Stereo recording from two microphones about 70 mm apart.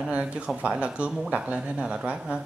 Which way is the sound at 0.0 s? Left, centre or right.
Centre.